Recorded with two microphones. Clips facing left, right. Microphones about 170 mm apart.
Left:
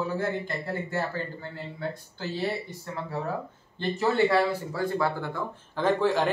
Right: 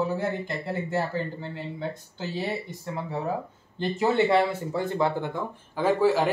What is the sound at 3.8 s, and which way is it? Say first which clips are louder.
Speech: right 1 dB; 20° right (ahead or behind).